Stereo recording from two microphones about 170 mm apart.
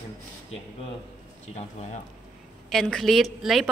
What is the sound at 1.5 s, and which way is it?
Speech, 40° left (ahead or behind).